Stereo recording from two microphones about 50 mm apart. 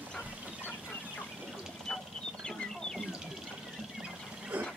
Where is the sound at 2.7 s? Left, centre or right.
Centre.